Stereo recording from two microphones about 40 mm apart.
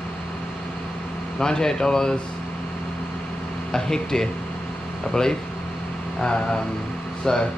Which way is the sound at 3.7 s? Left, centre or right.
Centre.